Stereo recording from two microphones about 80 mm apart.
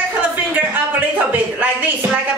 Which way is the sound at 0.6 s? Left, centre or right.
Right.